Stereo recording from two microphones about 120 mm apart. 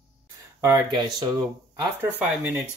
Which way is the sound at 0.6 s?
25° right (ahead or behind).